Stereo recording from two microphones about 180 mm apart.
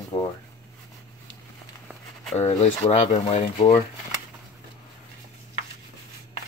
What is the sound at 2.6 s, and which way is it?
Speech, 35° left (ahead or behind).